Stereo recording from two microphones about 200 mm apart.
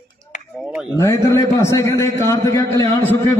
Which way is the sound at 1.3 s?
15° left (ahead or behind).